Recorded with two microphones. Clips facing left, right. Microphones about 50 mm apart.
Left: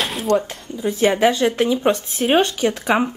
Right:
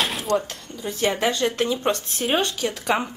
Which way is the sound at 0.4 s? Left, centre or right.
Centre.